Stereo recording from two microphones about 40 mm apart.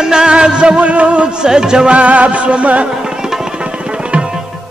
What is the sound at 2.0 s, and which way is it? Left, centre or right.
Music, right.